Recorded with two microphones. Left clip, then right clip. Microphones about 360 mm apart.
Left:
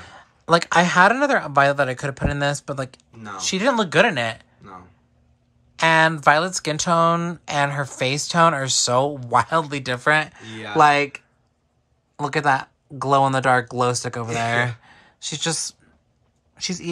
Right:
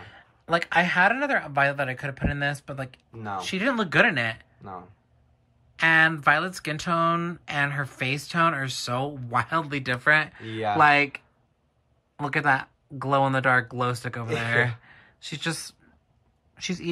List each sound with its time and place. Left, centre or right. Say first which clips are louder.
0.0 s speech: left 8 dB; centre
5.8 s speech: left 3 dB; centre
12.2 s speech: left 4 dB; centre
14.8 s a sound: left 7 dB; centre
16.5 s speech: left 3 dB; centre